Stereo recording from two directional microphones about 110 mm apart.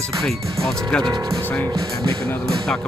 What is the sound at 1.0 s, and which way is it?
Speech, 40° right (ahead or behind).